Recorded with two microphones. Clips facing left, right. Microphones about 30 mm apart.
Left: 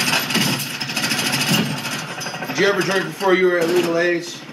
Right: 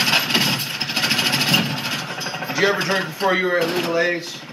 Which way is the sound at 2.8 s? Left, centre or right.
Centre.